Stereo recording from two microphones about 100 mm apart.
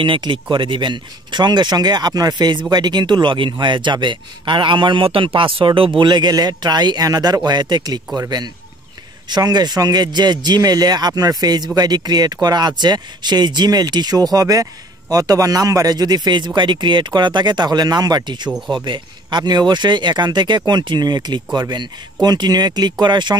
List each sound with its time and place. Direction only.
0.0 s speech: 55° right (ahead or behind)
5.9 s speech: 50° right (ahead or behind)
9.3 s speech: 45° right (ahead or behind)
18.5 s speech: 5° right (ahead or behind)
18.9 s speech: 45° right (ahead or behind)